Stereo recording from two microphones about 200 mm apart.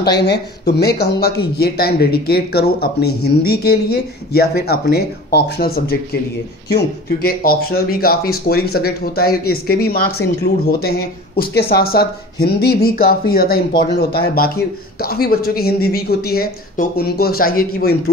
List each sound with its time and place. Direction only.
0.0 s speech: 55° left (ahead or behind)